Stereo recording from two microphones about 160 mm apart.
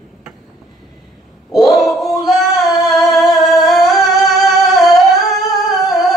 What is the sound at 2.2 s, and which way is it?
Singing, centre (ahead or behind).